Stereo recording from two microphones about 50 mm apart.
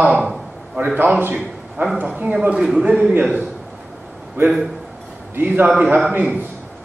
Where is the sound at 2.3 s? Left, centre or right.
Right.